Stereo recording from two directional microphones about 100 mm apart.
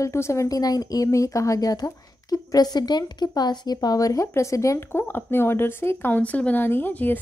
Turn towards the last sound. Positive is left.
turn(degrees=20)  # may be behind; listen again after turning